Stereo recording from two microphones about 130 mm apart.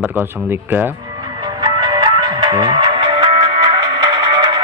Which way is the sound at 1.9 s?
35° right (ahead or behind).